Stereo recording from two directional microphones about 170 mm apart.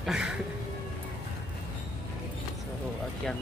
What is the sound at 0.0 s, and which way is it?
Music, 5° right (ahead or behind).